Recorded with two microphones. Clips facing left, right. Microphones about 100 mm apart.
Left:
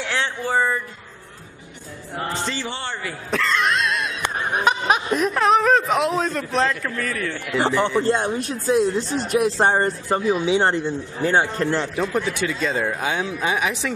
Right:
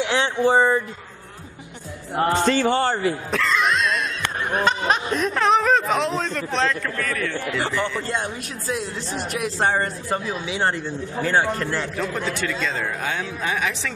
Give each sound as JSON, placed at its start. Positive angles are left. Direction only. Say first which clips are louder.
{"t": 0.0, "sound": "speech", "louder": "right 5 dB", "side_deg": -20}
{"t": 2.3, "sound": "a man's voice", "louder": "right 12 dB", "side_deg": -50}
{"t": 3.3, "sound": "throat clearing", "louder": "left 4 dB", "side_deg": 0}
{"t": 4.2, "sound": "speech", "louder": "left 2 dB", "side_deg": 15}
{"t": 7.5, "sound": "speech", "louder": "left 8 dB", "side_deg": 25}